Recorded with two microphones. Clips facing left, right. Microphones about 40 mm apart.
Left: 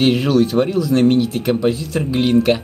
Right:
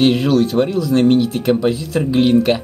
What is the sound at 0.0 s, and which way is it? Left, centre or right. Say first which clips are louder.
Speech: right 1 dB; centre.